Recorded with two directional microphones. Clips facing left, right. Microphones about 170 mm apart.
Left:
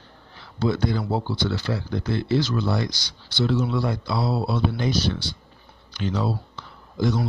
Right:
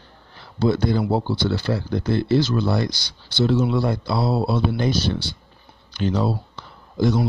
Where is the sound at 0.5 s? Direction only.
30° right (ahead or behind).